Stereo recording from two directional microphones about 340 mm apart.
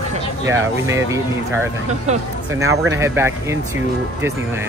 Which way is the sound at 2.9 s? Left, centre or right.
Centre.